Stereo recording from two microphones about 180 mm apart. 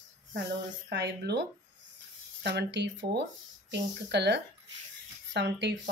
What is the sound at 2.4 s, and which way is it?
Speech, 70° right (ahead or behind).